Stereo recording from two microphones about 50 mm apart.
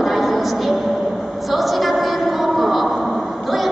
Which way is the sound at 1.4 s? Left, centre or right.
Centre.